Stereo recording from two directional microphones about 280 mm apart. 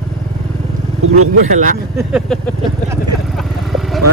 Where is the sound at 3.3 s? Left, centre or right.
Centre.